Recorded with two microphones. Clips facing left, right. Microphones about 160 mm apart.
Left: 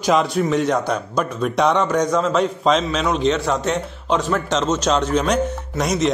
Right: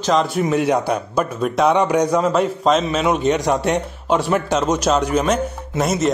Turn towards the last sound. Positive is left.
turn(degrees=-5)  # may be behind; listen again after turning